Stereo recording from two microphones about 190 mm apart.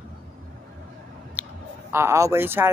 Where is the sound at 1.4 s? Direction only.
10° right (ahead or behind).